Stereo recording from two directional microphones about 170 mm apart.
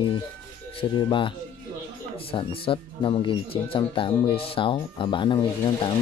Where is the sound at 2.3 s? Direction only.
30° left (ahead or behind).